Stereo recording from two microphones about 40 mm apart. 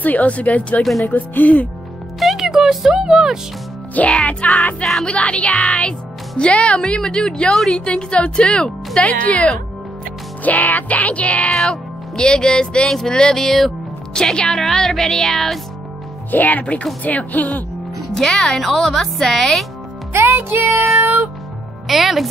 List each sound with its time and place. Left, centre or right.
0.0 s music: left
1.0 s speech: left
2.1 s music: centre
2.4 s speech: centre
4.1 s music: left
5.0 s speech: left
10.4 s music: left
11.5 s speech: centre
16.3 s speech: left
18.1 s speech: centre
18.6 s speech: centre
20.1 s music: right
21.8 s speech: centre